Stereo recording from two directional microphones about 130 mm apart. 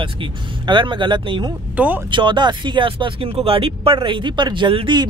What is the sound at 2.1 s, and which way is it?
Speech, 35° right (ahead or behind).